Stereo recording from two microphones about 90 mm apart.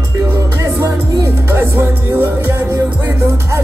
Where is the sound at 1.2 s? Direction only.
25° right (ahead or behind).